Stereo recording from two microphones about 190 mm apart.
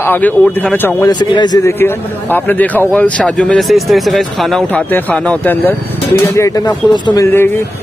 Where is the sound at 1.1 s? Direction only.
25° left (ahead or behind).